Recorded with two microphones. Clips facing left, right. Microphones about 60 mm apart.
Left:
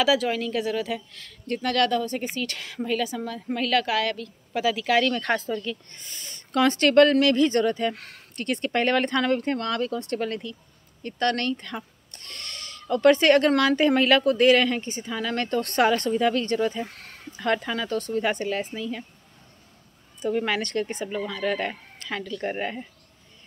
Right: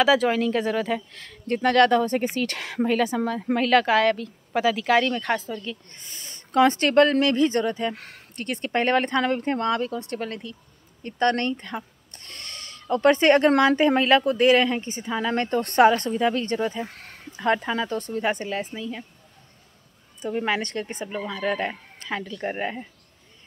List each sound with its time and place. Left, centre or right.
0.0 s speech: right
2.2 s speech: right
5.0 s speech: centre
5.9 s speech: centre
10.1 s speech: centre
11.0 s speech: centre
14.9 s speech: right; by 19.0 s centre
20.4 s speech: right